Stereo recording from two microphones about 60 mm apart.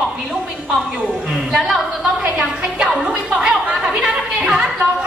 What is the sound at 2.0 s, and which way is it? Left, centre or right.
Speech, centre.